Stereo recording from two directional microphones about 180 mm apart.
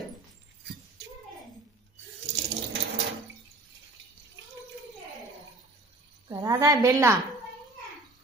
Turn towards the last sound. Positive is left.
turn(degrees=-15)  # may be behind; listen again after turning